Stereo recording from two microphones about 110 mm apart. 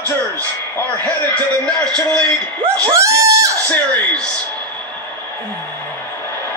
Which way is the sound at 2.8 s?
30° right (ahead or behind).